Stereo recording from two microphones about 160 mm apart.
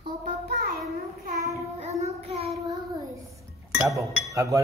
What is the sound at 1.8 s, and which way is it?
Child singing, 45° right (ahead or behind).